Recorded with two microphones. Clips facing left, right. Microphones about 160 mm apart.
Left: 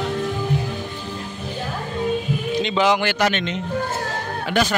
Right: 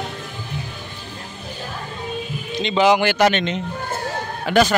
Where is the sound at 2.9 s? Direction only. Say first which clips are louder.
Right 3 dB; 15° right (ahead or behind).